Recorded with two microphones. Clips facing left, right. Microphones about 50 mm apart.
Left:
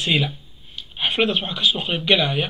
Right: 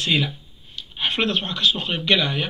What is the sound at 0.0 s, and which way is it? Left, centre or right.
Speech, centre.